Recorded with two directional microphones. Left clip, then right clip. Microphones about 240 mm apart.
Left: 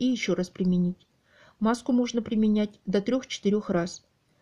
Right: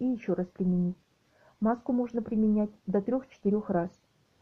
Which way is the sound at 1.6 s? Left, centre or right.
Left.